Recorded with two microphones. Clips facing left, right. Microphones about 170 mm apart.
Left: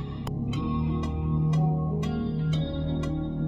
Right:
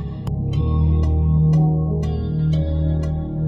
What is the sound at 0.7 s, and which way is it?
Music, 35° right (ahead or behind).